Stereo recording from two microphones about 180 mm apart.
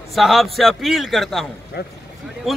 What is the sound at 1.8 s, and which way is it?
Speech, 65° left (ahead or behind).